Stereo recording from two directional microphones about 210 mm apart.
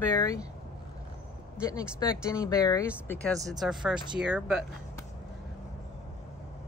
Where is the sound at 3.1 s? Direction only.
5° left (ahead or behind).